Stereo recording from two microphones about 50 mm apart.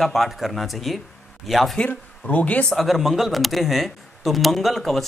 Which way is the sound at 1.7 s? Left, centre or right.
Left.